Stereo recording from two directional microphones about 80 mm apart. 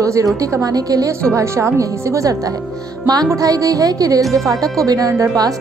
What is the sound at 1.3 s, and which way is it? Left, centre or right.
Speech, right.